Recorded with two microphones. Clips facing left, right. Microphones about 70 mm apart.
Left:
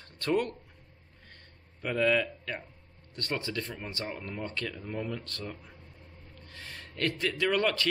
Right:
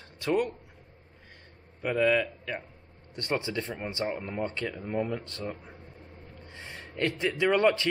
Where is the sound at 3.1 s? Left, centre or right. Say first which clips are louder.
Right 3 dB; right.